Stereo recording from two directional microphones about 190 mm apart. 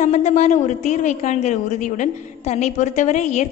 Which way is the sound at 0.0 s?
40° left (ahead or behind).